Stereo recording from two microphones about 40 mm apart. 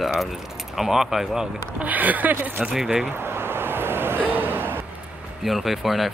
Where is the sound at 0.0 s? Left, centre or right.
Centre.